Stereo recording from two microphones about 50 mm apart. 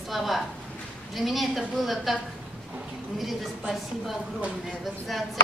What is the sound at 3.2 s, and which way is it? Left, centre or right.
Speech, centre.